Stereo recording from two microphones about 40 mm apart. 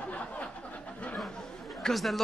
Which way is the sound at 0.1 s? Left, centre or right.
Left.